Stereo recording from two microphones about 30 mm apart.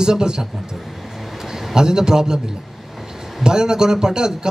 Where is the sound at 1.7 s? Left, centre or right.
Right.